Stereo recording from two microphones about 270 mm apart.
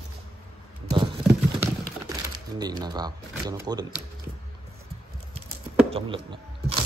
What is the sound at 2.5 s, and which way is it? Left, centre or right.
Speech, centre.